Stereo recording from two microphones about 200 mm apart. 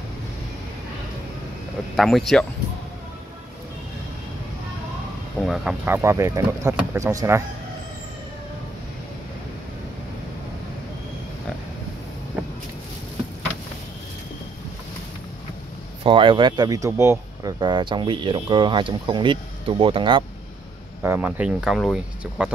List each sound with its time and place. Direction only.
2.0 s speech: centre (ahead or behind)
5.4 s speech: centre (ahead or behind)
16.0 s speech: 25° right (ahead or behind)
21.0 s speech: 10° right (ahead or behind)